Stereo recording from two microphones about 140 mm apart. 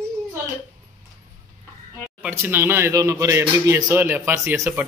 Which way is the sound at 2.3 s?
15° right (ahead or behind).